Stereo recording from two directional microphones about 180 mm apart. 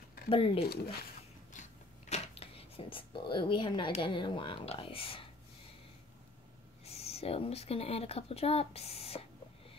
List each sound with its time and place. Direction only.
0.3 s speech: 30° left (ahead or behind)
1.5 s a sound: 40° left (ahead or behind)
6.8 s speech: 35° left (ahead or behind)